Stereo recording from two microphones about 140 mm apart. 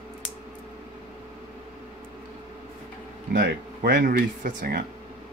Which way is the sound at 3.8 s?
85° right.